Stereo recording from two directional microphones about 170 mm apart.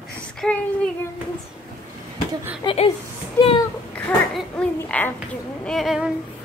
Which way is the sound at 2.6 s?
35° left (ahead or behind).